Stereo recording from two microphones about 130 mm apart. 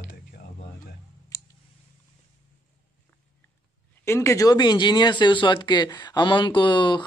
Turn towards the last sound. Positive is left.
turn(degrees=35)  # may be behind; listen again after turning